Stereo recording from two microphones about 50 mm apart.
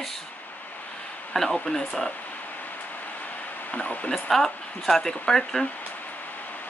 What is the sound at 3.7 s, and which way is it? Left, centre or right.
Speech, left.